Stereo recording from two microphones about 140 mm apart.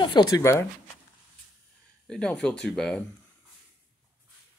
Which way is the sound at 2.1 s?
5° left (ahead or behind).